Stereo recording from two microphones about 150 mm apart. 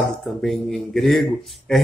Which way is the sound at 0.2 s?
Centre (ahead or behind).